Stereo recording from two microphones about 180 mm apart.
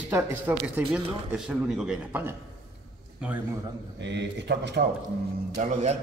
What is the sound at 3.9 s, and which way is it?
Speech, 75° right (ahead or behind).